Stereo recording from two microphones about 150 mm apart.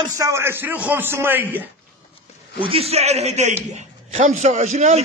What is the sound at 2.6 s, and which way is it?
A man's voice, 40° right (ahead or behind).